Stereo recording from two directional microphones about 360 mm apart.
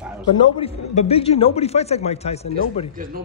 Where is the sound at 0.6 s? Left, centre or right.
Centre.